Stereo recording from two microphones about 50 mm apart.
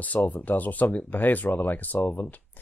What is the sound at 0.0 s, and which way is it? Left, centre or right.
Speech, left.